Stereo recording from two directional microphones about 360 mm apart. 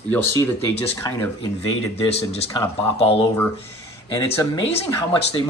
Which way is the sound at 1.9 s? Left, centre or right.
Centre.